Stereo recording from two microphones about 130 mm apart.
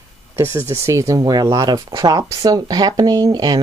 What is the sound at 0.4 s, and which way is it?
Speech, 20° right (ahead or behind).